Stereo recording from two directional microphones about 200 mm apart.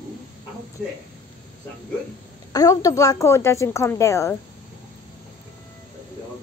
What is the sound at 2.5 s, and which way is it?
A woman's voice, 15° left (ahead or behind).